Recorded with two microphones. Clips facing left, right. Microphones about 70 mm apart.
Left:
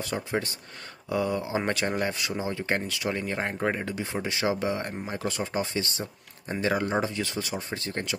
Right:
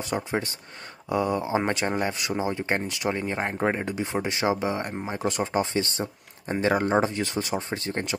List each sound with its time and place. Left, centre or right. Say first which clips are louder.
0.1 s speech: right 4 dB; centre
1.0 s speech: right 2 dB; right